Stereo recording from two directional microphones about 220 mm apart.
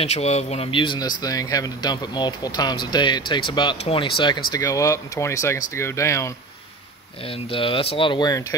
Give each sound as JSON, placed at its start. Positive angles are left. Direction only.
{"t": 0.0, "sound": "speech", "side_deg": 30}
{"t": 7.2, "sound": "speech", "side_deg": 25}